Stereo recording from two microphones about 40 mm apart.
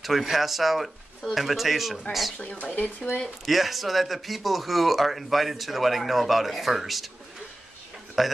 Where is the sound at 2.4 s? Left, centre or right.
Left.